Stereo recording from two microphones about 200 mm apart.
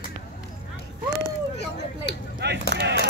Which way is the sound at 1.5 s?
60° left (ahead or behind).